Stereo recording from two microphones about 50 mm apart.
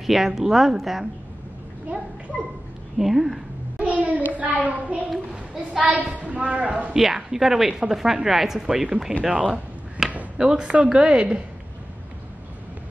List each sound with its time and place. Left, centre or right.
0.0 s a woman's voice: centre
3.0 s a woman's voice: centre
3.7 s child singing: right
4.4 s a child's voice: right
5.3 s a child's voice: centre
5.8 s a woman's voice: right
6.9 s a woman's voice: centre
9.2 s a woman's voice: right
10.0 s a sound: centre
10.3 s a woman's voice: centre